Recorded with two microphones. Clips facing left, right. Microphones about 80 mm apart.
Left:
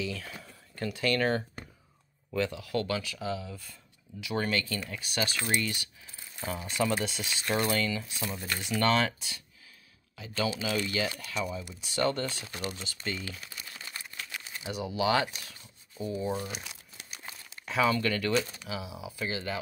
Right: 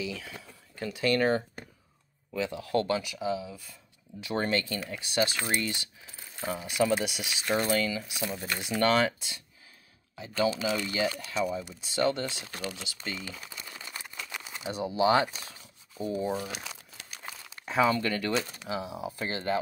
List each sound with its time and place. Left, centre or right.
0.0 s speech: centre
2.5 s speech: right
3.0 s speech: centre
4.2 s speech: right
6.4 s speech: centre
8.5 s speech: centre
10.6 s speech: right
14.6 s speech: right
16.3 s speech: centre
17.6 s speech: right
18.6 s speech: right